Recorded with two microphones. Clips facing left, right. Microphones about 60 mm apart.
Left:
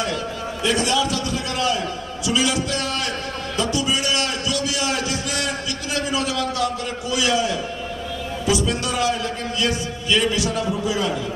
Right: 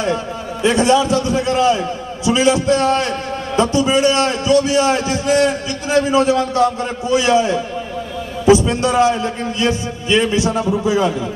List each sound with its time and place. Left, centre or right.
0.0 s a man's voice: right